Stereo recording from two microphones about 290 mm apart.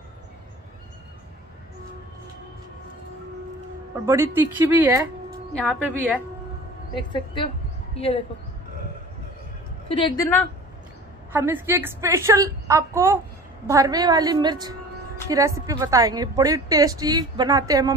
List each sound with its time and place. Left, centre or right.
4.0 s a woman's voice: centre
5.6 s a woman's voice: centre
7.0 s a woman's voice: centre
9.8 s a woman's voice: centre
11.3 s a woman's voice: centre